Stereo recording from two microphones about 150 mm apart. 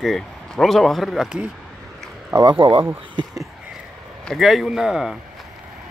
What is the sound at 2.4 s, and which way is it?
Speech, 35° right (ahead or behind).